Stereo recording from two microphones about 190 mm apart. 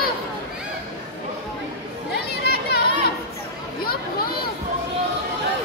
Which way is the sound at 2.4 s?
60° left (ahead or behind).